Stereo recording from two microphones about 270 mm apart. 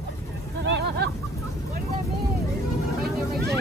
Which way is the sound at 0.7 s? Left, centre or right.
Right.